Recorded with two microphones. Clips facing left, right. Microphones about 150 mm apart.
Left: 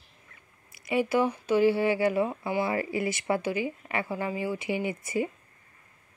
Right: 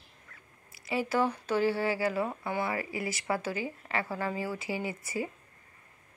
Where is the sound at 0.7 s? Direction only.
20° left (ahead or behind).